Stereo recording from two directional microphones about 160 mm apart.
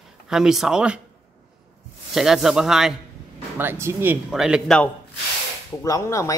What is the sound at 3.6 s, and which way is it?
Speech, 15° right (ahead or behind).